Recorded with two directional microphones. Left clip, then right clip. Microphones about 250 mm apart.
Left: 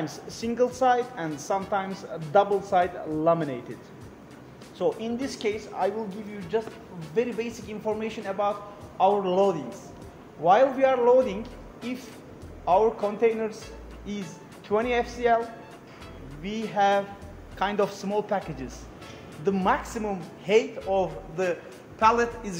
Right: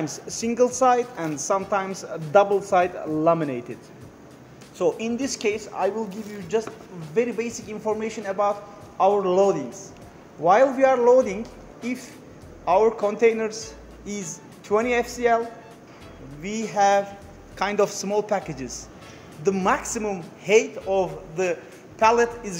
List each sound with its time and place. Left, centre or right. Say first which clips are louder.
0.0 s a man's voice: right 4 dB; right
4.7 s a man's voice: right 4 dB; right
12.6 s a man's voice: right 3 dB; centre
16.4 s a man's voice: right 3 dB; right; by 22.6 s centre